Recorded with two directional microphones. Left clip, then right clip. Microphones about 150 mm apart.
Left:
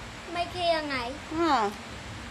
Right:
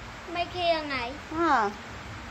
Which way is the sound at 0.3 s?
15° left (ahead or behind).